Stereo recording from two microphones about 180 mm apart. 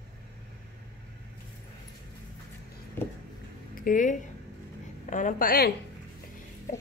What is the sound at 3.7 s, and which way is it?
A woman's voice, 50° left (ahead or behind).